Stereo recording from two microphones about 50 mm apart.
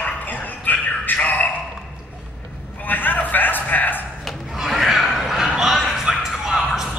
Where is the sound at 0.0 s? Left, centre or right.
Left.